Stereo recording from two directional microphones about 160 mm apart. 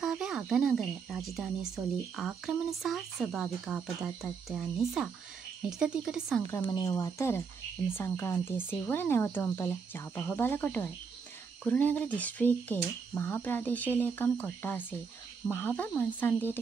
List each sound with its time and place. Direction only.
0.0 s speech: 5° right (ahead or behind)
6.5 s speech: 20° left (ahead or behind)